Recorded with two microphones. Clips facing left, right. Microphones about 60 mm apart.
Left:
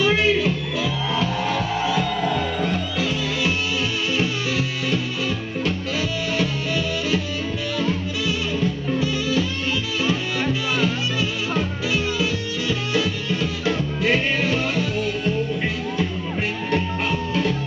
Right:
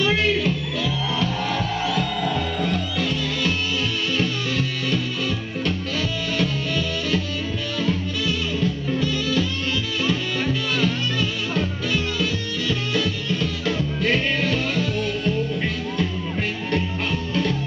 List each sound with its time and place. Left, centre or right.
0.0 s music: centre